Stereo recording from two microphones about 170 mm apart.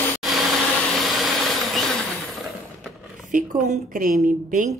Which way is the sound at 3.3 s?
50° right (ahead or behind).